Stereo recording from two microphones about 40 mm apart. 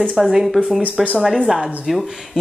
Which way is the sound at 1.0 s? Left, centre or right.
Centre.